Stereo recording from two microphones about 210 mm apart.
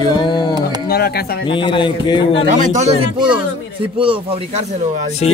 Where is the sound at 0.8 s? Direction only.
50° left (ahead or behind).